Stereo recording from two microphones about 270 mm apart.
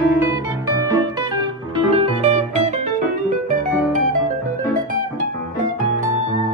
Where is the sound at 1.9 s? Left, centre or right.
Right.